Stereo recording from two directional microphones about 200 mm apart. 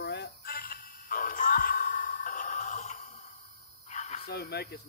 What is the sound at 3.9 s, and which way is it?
Cricket, 35° left (ahead or behind).